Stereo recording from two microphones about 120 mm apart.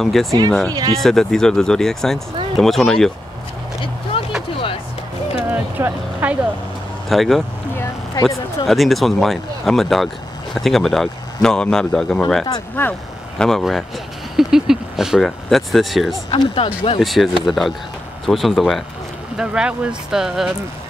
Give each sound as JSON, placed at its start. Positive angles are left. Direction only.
{"t": 0.0, "sound": "speech", "side_deg": 0}
{"t": 0.7, "sound": "speech", "side_deg": -30}
{"t": 0.9, "sound": "speech", "side_deg": 0}
{"t": 4.1, "sound": "music", "side_deg": 50}
{"t": 5.5, "sound": "vehicle", "side_deg": -15}
{"t": 7.1, "sound": "speech", "side_deg": 0}
{"t": 7.7, "sound": "a sound", "side_deg": 20}
{"t": 8.6, "sound": "speech", "side_deg": 0}
{"t": 12.8, "sound": "speech", "side_deg": 15}
{"t": 13.4, "sound": "speech", "side_deg": 0}
{"t": 16.3, "sound": "speech", "side_deg": 50}
{"t": 17.0, "sound": "speech", "side_deg": 0}